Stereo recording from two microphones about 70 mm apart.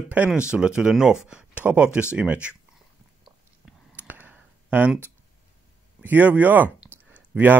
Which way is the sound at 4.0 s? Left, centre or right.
Right.